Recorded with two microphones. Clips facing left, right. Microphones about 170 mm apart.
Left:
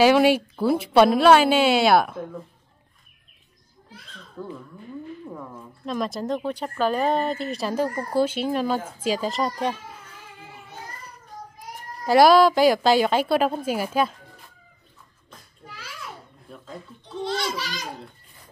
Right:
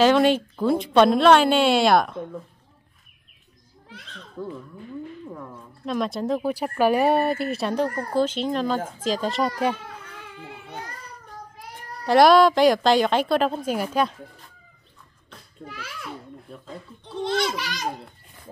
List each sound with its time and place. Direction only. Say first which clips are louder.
0.0 s speech: left 1 dB; 10° left (ahead or behind)
4.4 s speech: right 2 dB; centre (ahead or behind)
10.1 s a sound: right 4 dB; 65° right (ahead or behind)
12.1 s speech: even; 5° left (ahead or behind)
15.2 s a sound: right 6 dB; 55° right (ahead or behind)
17.2 s a child's voice: right 3 dB; 55° right (ahead or behind)